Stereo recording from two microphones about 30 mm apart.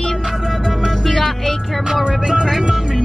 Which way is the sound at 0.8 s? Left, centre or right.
Centre.